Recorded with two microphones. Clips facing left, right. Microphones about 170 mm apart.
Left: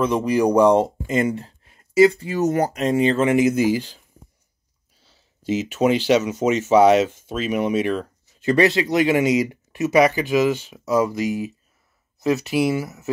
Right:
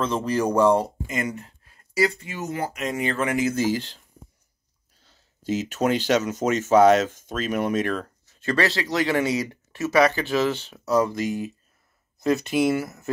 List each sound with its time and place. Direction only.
0.0 s speech: 15° left (ahead or behind)
5.0 s speech: 5° left (ahead or behind)
8.5 s speech: 20° left (ahead or behind); by 13.1 s 5° left (ahead or behind)